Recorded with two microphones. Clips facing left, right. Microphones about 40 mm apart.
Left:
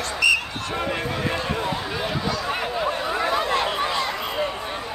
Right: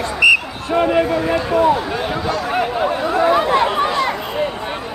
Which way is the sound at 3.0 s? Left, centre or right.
Right.